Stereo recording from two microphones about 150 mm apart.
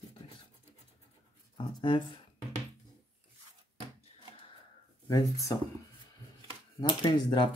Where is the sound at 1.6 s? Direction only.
35° left (ahead or behind).